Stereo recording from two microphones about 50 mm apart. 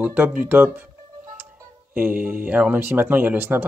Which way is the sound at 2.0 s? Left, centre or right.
Right.